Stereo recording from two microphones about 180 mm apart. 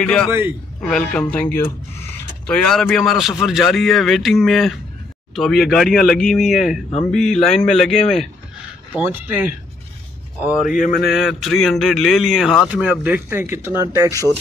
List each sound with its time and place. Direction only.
0.0 s a man's voice: 5° left (ahead or behind)
0.3 s speech: 10° right (ahead or behind)
0.8 s a man's voice: 5° left (ahead or behind)
8.9 s speech: 10° right (ahead or behind)
10.6 s a sound: 50° left (ahead or behind)
11.1 s a man's voice: centre (ahead or behind)